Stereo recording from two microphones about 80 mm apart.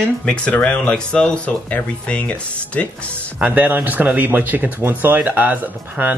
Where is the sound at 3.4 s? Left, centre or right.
Right.